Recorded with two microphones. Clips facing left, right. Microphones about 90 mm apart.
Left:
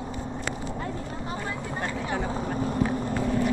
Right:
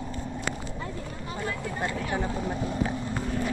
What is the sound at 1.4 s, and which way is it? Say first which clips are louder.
Vehicle: even; 20° left (ahead or behind).